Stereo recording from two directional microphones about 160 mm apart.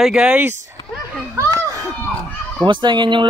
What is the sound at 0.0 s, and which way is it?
Speech, 5° right (ahead or behind).